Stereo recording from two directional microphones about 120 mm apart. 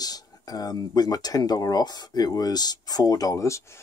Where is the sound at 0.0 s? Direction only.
30° left (ahead or behind).